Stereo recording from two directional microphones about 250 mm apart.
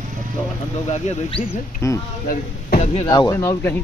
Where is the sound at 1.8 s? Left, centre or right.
Centre.